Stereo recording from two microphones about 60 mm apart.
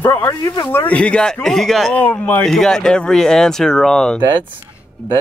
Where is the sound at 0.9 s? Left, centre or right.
Centre.